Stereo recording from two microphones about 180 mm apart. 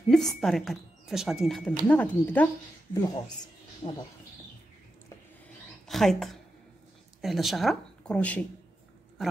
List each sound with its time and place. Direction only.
0.1 s a woman's voice: centre (ahead or behind); by 4.0 s 20° left (ahead or behind)
5.9 s speech: centre (ahead or behind)